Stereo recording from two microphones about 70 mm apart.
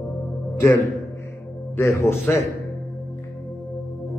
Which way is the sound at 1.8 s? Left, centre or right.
Left.